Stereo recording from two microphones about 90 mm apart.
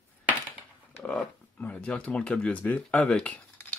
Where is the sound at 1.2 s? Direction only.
15° left (ahead or behind).